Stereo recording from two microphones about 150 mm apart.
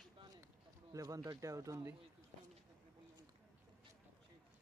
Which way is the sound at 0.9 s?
25° right (ahead or behind).